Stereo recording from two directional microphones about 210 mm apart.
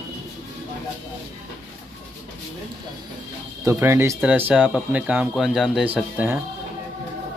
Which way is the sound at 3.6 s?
10° right (ahead or behind).